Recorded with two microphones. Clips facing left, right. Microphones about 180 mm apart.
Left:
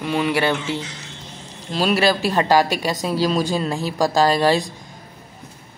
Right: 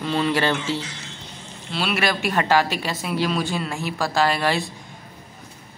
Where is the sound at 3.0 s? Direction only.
35° left (ahead or behind).